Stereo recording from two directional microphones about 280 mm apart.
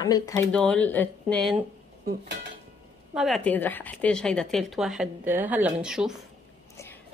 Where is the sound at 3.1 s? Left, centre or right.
Centre.